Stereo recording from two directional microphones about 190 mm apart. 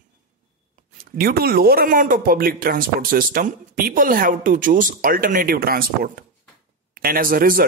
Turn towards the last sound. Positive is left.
turn(degrees=-50)  # may be behind; listen again after turning